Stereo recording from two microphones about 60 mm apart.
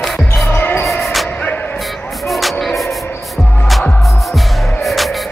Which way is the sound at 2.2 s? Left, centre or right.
Centre.